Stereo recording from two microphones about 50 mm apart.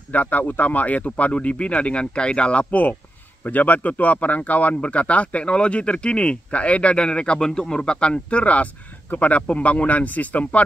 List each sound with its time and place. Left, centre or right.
0.1 s speech: left